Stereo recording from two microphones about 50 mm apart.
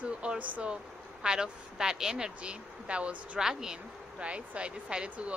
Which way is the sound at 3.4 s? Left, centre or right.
Centre.